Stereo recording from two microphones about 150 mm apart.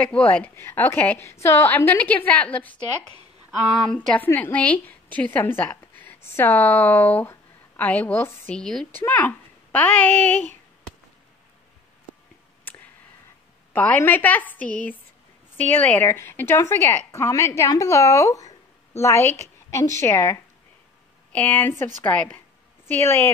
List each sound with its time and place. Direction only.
0.0 s speech: 10° left (ahead or behind)
3.9 s a woman's voice: 5° left (ahead or behind)
12.7 s clicking: 10° left (ahead or behind)
13.7 s a woman's voice: 10° left (ahead or behind)